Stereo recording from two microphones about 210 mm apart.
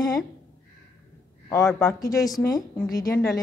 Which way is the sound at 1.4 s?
15° left (ahead or behind).